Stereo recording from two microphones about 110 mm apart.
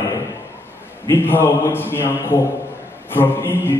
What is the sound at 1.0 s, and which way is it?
A man's voice, 20° left (ahead or behind).